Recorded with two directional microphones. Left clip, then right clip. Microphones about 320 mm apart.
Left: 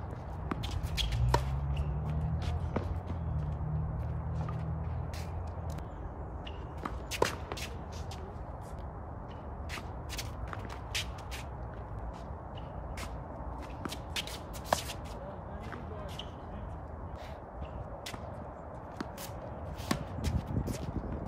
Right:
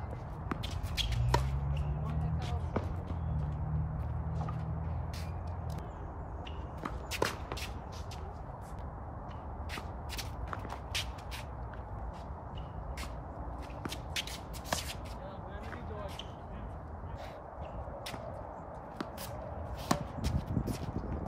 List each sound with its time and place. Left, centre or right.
0.5 s shuffle: centre
2.3 s basketball bounce: centre
7.2 s a sound: left
10.1 s walk: centre
14.7 s shuffle: centre
19.9 s chop: centre